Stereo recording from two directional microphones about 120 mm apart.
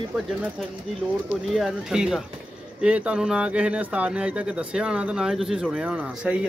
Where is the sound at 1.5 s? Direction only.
5° right (ahead or behind).